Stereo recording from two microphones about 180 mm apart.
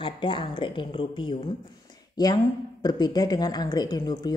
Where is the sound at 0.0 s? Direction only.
25° left (ahead or behind).